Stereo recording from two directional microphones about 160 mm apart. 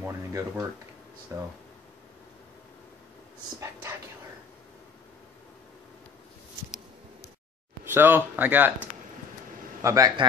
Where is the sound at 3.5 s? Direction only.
20° right (ahead or behind).